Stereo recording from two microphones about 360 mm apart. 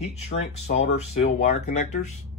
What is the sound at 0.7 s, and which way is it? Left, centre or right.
Speech, centre.